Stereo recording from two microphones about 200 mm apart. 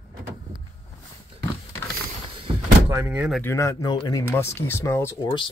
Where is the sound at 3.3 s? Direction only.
10° left (ahead or behind).